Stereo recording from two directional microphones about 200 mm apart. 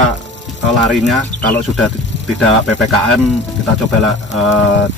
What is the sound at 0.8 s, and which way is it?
Speech, centre (ahead or behind).